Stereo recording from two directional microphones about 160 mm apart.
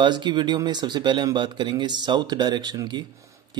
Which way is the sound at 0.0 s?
30° right (ahead or behind).